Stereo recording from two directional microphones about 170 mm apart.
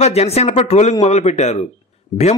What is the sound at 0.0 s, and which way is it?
A man's voice, 40° left (ahead or behind).